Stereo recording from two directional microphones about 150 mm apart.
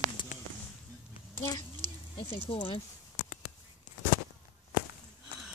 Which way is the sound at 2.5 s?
35° left (ahead or behind).